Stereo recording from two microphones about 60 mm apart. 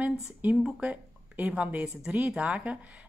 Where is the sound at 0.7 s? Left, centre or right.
Right.